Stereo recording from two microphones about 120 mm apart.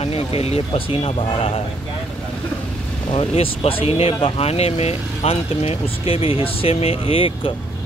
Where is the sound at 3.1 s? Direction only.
55° left (ahead or behind).